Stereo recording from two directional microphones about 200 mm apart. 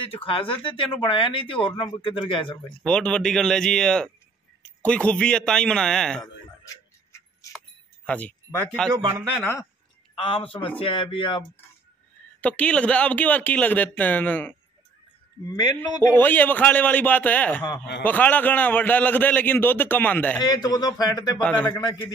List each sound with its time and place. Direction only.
0.0 s speech: 25° left (ahead or behind)
2.8 s a man's voice: 5° left (ahead or behind)
6.6 s tick-tock: 15° left (ahead or behind)
7.5 s a sound: 5° left (ahead or behind)
8.9 s speech: 15° right (ahead or behind)
9.4 s a man's voice: 10° left (ahead or behind)
10.1 s speech: 25° left (ahead or behind)
12.4 s a man's voice: 5° left (ahead or behind)
16.1 s a man's voice: 10° left (ahead or behind)
20.4 s speech: 20° left (ahead or behind)
21.4 s a man's voice: 5° left (ahead or behind)
21.6 s speech: 20° left (ahead or behind)